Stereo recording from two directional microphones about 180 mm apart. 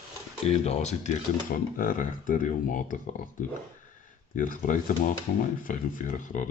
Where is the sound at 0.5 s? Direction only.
40° left (ahead or behind).